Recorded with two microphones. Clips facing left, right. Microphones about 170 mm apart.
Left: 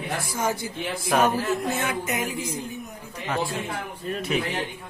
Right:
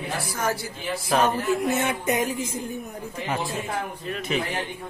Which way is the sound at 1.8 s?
30° right (ahead or behind).